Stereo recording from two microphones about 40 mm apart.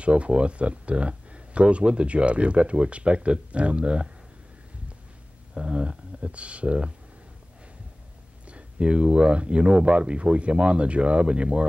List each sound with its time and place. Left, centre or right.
0.0 s speech: right
5.5 s speech: right
8.5 s speech: right